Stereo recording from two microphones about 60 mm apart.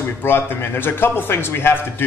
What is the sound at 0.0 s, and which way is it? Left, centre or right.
A man's voice, left.